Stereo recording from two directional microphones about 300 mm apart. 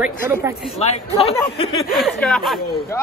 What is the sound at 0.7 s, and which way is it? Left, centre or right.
Speech, left.